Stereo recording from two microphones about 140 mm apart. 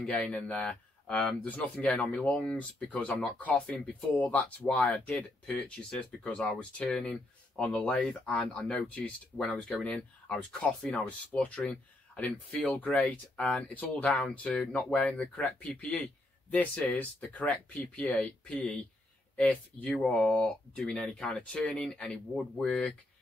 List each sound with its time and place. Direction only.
0.0 s speech: 10° left (ahead or behind)